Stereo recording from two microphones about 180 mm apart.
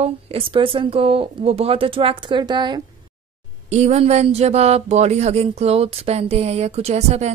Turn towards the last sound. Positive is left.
turn(degrees=-35)  # may be behind; listen again after turning